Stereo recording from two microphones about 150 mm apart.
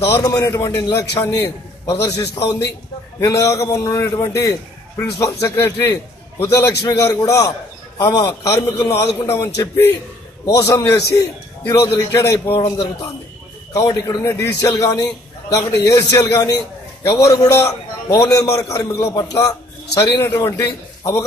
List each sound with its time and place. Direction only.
0.1 s a man's voice: 25° left (ahead or behind)
13.7 s a man's voice: 25° left (ahead or behind)